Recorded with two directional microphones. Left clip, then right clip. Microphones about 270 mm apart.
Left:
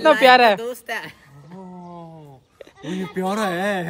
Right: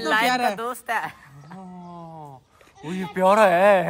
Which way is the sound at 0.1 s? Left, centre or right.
Centre.